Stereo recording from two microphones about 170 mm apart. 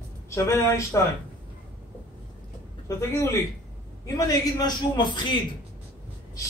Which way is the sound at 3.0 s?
15° left (ahead or behind).